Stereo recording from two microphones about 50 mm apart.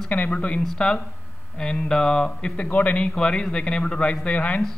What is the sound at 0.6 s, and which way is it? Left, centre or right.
Speech, centre.